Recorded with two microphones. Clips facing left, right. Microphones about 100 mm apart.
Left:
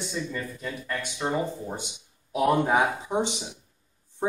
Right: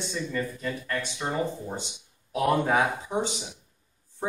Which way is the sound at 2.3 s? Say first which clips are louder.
Left 1 dB; 10° left (ahead or behind).